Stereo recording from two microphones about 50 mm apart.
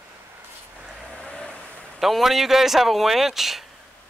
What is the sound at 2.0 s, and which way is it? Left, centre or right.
Speech, centre.